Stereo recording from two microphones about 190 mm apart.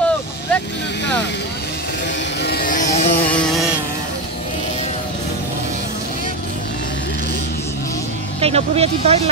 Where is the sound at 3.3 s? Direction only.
5° left (ahead or behind).